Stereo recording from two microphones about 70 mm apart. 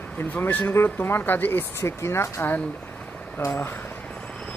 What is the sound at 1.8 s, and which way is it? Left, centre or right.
Speech, left.